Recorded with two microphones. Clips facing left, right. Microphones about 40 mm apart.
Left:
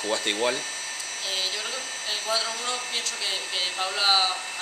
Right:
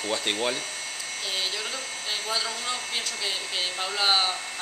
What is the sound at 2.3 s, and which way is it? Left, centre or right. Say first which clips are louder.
Speech: left 3 dB; centre.